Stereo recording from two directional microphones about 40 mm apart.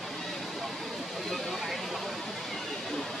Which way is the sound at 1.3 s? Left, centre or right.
Centre.